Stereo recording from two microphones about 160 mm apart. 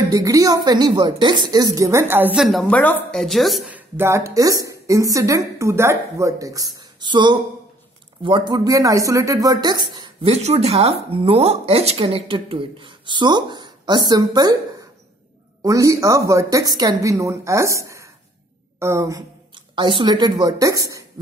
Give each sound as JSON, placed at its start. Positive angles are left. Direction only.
{"t": 0.1, "sound": "speech", "side_deg": -20}
{"t": 2.4, "sound": "a woman's voice", "side_deg": 5}
{"t": 19.7, "sound": "speech", "side_deg": -30}